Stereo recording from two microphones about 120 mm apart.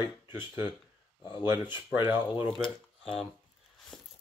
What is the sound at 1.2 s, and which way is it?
Speech, 40° left (ahead or behind).